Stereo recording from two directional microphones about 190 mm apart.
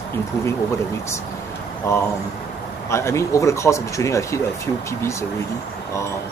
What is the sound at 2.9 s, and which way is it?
Speech, 15° left (ahead or behind).